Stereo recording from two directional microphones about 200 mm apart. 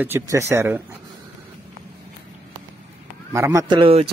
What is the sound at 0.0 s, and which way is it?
Speech, 10° right (ahead or behind).